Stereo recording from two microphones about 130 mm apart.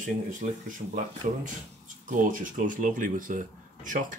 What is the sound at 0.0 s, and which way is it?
Speech, 80° right.